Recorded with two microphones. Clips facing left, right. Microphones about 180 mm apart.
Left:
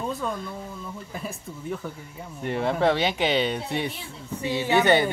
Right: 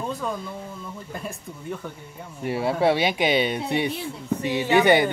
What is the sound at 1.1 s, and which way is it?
Speech, centre (ahead or behind).